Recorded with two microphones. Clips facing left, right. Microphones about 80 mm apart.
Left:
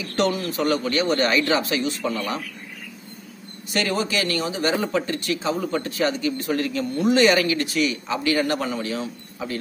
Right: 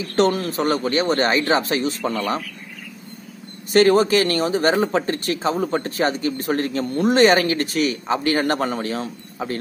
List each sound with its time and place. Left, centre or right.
0.1 s speech: right
3.7 s speech: right